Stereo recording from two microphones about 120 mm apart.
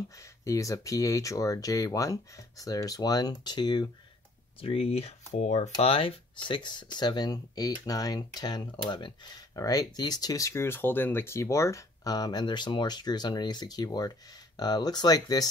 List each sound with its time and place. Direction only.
0.5 s speech: 25° left (ahead or behind)
4.6 s speech: 50° left (ahead or behind); by 15.4 s 30° left (ahead or behind)